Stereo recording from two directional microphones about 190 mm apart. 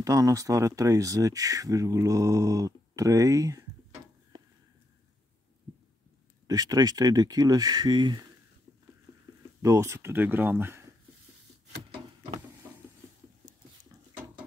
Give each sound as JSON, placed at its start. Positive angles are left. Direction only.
{"t": 0.0, "sound": "speech", "side_deg": -15}
{"t": 6.4, "sound": "speech", "side_deg": -20}
{"t": 9.6, "sound": "speech", "side_deg": -15}